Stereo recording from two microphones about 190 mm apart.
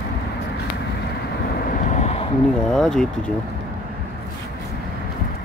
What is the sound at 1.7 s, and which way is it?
Vehicle, 35° left (ahead or behind).